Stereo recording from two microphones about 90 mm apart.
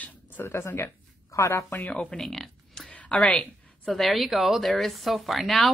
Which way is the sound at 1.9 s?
15° left (ahead or behind).